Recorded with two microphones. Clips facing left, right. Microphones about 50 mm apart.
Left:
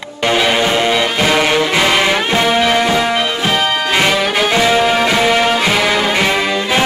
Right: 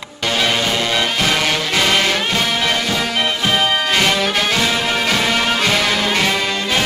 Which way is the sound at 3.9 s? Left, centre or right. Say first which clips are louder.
Left 3 dB; centre.